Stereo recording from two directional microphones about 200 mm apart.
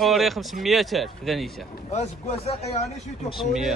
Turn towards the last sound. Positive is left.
turn(degrees=0)  # may be behind; listen again after turning